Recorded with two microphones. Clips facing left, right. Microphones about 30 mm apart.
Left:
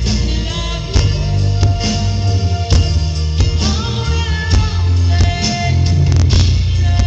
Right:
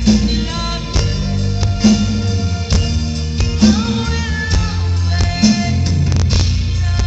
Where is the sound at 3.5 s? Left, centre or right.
Left.